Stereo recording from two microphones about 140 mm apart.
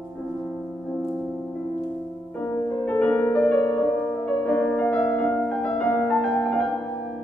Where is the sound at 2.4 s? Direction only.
10° left (ahead or behind).